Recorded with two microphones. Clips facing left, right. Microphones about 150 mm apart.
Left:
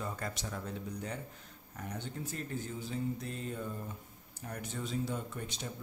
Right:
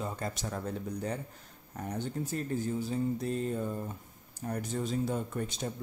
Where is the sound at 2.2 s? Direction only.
40° right (ahead or behind).